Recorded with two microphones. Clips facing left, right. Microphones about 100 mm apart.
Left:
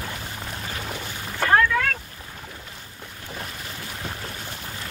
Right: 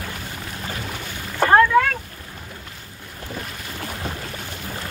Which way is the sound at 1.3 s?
30° right (ahead or behind).